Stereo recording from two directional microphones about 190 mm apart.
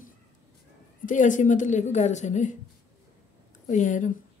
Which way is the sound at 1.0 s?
40° left (ahead or behind).